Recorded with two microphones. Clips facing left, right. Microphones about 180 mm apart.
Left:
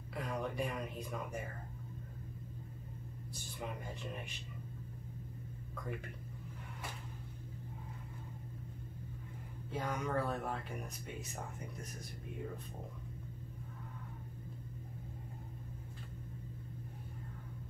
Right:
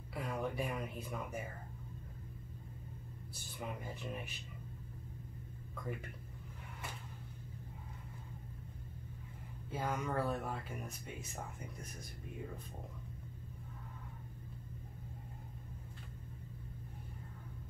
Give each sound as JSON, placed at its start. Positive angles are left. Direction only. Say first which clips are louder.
{"t": 0.1, "sound": "speech", "louder": "even", "side_deg": -5}
{"t": 9.7, "sound": "speech", "louder": "even", "side_deg": 0}